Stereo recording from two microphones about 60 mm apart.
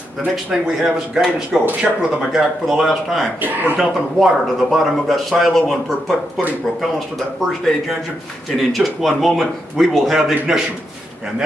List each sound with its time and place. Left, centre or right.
0.5 s speech: centre
3.3 s speech: right
3.8 s speech: centre